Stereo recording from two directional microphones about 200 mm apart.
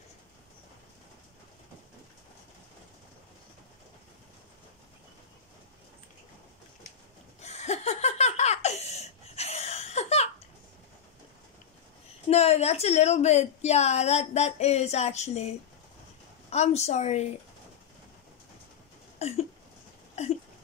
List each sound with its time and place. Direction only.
7.3 s laughter: 35° left (ahead or behind)
12.3 s a woman's voice: 30° left (ahead or behind)
19.1 s a sound: 30° left (ahead or behind)